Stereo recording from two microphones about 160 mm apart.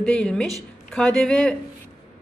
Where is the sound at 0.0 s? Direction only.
5° left (ahead or behind).